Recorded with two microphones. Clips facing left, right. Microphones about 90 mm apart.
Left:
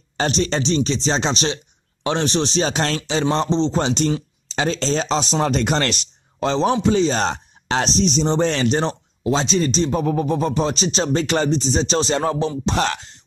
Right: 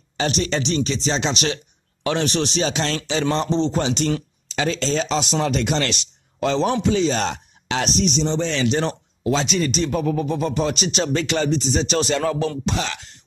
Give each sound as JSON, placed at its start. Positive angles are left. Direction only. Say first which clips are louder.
{"t": 0.2, "sound": "speech", "louder": "left 2 dB", "side_deg": 35}
{"t": 6.4, "sound": "speech", "louder": "left 2 dB", "side_deg": 30}
{"t": 8.8, "sound": "speech", "louder": "left 1 dB", "side_deg": 30}
{"t": 12.7, "sound": "speech", "louder": "left 5 dB", "side_deg": 50}